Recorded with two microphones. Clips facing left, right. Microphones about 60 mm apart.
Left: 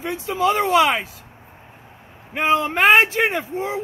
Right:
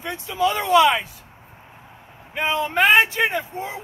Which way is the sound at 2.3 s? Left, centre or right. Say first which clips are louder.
Left 2 dB; left.